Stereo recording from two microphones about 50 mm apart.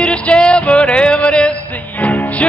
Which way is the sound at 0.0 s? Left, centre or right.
Centre.